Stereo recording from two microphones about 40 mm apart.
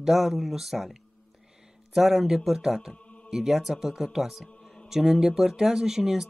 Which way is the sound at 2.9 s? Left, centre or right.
Left.